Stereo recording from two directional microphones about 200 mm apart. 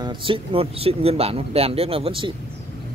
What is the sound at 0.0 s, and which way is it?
Speech, 25° right (ahead or behind).